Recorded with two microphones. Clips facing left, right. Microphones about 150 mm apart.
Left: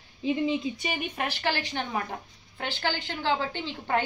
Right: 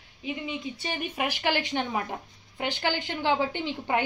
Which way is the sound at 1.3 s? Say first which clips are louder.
Right 2 dB; 15° right (ahead or behind).